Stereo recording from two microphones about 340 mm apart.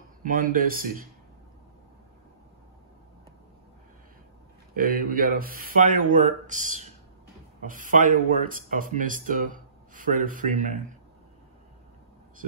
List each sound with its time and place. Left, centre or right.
0.2 s speech: right
4.7 s speech: right